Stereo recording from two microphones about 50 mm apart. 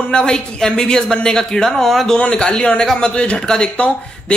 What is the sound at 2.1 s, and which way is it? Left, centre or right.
Speech, left.